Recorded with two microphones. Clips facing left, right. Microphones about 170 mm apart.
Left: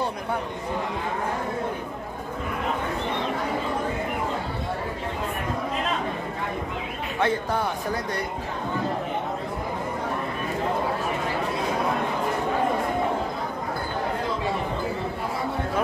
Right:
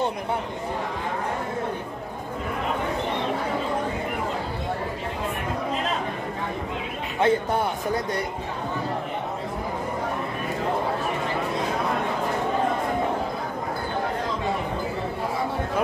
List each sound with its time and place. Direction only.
7.2 s speech: 20° right (ahead or behind)